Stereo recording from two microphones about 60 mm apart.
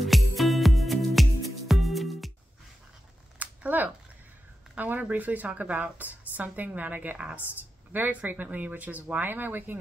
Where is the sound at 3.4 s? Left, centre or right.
Right.